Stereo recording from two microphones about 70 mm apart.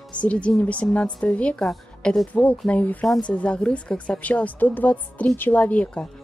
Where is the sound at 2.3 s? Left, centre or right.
Left.